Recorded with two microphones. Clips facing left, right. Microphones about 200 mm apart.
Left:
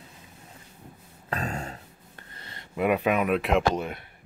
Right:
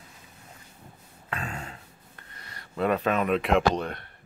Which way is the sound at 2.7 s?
10° left (ahead or behind).